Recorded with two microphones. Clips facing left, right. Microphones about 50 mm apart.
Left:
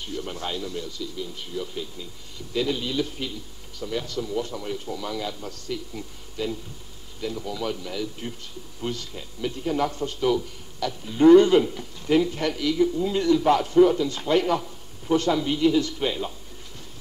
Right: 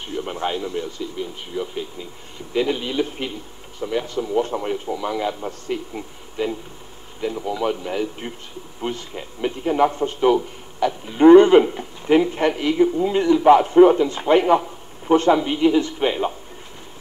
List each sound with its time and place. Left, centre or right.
0.0 s a man's voice: right